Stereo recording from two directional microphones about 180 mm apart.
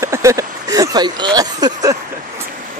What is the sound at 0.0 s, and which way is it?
Speech, 15° right (ahead or behind).